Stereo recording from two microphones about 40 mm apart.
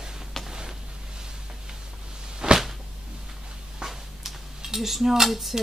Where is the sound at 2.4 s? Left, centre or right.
Right.